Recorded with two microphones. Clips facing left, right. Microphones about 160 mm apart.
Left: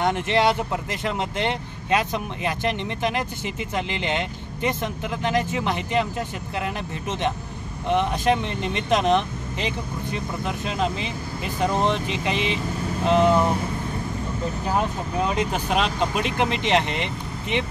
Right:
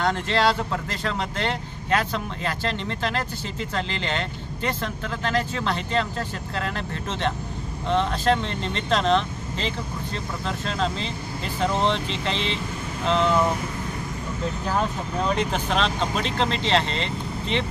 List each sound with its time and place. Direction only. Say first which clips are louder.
0.0 s speech: left 1 dB; 20° left (ahead or behind)
14.7 s speech: left 2 dB; 10° left (ahead or behind)